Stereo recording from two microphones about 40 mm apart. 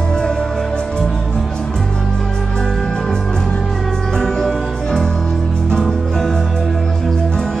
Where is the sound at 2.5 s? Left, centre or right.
Centre.